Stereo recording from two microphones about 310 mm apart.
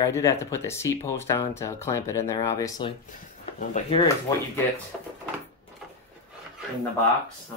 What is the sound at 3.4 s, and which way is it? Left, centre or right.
Speech, left.